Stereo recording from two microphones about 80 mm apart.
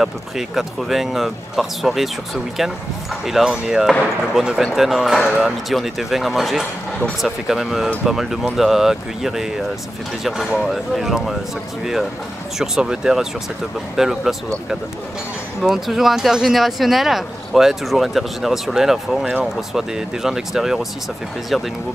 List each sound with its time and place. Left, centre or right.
0.0 s speech: centre
3.3 s speech: centre